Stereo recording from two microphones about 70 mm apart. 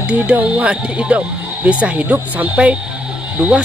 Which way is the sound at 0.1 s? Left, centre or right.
Right.